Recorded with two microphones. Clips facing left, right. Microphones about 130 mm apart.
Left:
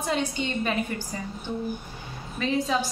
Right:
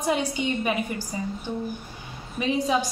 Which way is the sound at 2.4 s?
15° right (ahead or behind).